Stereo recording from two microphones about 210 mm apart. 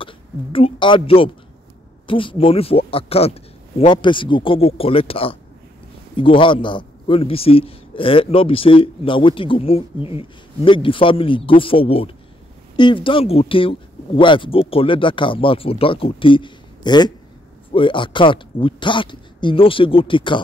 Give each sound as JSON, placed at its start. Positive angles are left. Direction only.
{"t": 0.0, "sound": "speech", "side_deg": 25}